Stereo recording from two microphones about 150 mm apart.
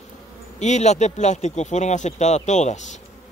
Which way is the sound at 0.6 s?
50° left (ahead or behind).